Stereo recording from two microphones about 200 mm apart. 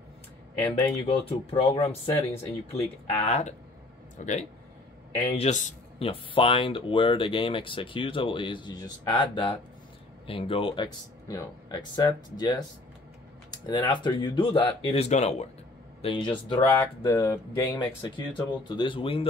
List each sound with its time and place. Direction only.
1.0 s speech: 30° left (ahead or behind)
16.6 s speech: 10° left (ahead or behind); by 19.2 s 25° left (ahead or behind)